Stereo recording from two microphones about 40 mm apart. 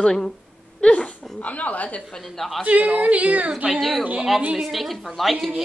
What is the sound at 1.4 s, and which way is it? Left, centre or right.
Speech, left.